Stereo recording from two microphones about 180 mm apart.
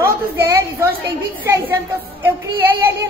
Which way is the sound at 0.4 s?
15° right (ahead or behind).